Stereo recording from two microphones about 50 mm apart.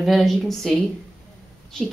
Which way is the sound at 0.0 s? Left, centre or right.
Centre.